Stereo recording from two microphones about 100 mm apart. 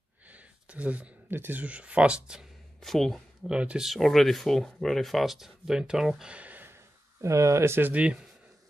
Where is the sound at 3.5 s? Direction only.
10° right (ahead or behind).